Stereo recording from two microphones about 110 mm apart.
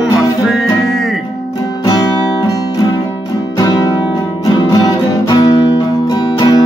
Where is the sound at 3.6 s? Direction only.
35° left (ahead or behind).